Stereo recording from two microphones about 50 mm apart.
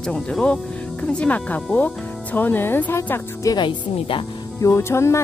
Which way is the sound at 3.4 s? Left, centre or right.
Left.